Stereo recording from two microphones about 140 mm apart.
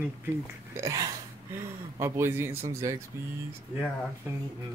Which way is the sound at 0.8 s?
25° right (ahead or behind).